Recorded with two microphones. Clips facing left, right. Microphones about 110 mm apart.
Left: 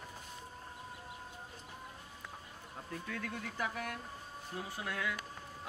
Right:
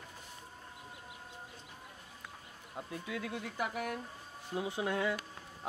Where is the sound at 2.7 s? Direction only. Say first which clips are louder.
Right 3 dB; 15° right (ahead or behind).